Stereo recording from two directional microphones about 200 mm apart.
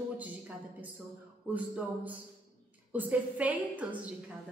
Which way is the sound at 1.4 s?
5° right (ahead or behind).